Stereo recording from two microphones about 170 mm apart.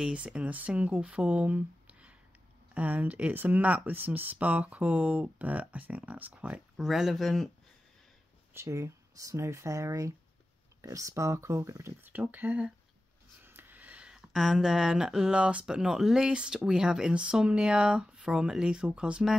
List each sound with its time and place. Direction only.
0.0 s speech: 5° right (ahead or behind)
8.5 s speech: 15° right (ahead or behind)